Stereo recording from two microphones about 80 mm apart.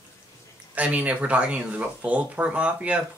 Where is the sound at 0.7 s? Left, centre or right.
Centre.